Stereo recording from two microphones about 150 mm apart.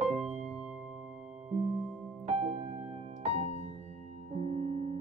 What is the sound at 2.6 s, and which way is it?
Music, 40° right (ahead or behind).